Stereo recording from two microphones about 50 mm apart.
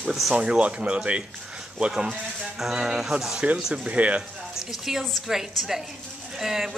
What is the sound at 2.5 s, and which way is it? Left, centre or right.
Speech, centre.